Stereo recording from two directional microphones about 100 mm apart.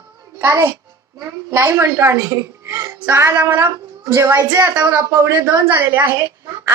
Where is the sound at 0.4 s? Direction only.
25° right (ahead or behind).